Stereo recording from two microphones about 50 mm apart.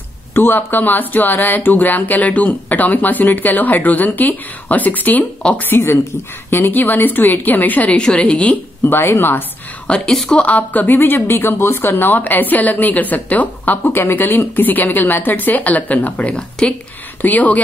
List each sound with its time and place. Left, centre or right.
0.3 s speech: left
5.4 s speech: centre
6.7 s speech: left
8.0 s a woman's voice: centre
8.8 s speech: left
9.8 s a woman's voice: centre
10.3 s speech: left
16.3 s speech: centre
17.2 s speech: left